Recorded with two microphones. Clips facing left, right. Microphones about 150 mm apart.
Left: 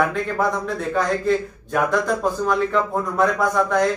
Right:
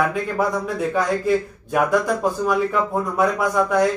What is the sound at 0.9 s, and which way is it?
Speech, 10° right (ahead or behind).